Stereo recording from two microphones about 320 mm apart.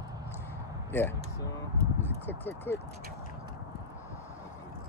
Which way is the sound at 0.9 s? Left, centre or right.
Centre.